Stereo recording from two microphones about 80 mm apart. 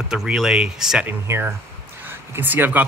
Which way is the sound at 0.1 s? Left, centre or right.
Centre.